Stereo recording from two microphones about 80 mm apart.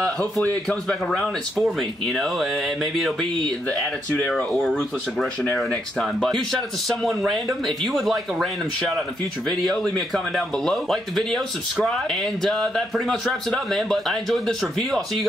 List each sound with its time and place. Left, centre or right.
0.7 s speech: centre
3.6 s speech: centre